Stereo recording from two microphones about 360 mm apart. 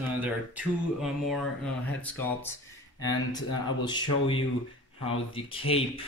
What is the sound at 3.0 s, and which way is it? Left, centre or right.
Speech, centre.